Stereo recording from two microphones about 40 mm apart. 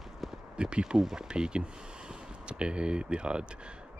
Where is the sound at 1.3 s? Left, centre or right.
Right.